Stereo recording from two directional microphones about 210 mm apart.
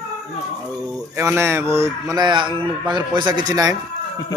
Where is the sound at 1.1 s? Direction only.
10° right (ahead or behind).